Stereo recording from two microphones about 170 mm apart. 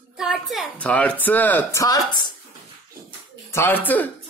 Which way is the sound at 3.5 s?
10° left (ahead or behind).